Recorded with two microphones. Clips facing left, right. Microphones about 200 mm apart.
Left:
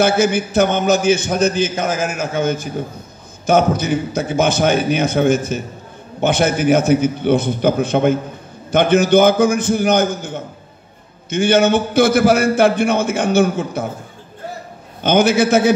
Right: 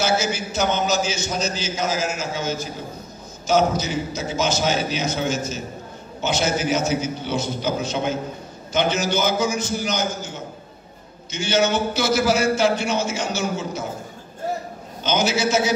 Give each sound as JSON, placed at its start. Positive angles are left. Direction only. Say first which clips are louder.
{"t": 0.0, "sound": "a man's voice", "louder": "left 8 dB", "side_deg": 55}
{"t": 15.0, "sound": "a man's voice", "louder": "left 8 dB", "side_deg": 55}